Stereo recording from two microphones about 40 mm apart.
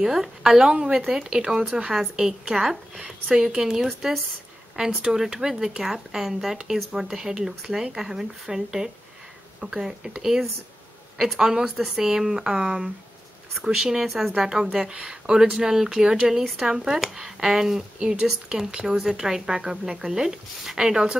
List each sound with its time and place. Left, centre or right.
0.0 s speech: centre
0.4 s speech: centre
11.1 s speech: centre
14.9 s speech: right
15.5 s speech: centre